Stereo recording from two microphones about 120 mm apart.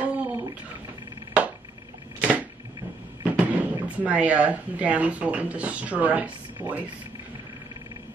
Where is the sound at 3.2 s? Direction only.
15° right (ahead or behind).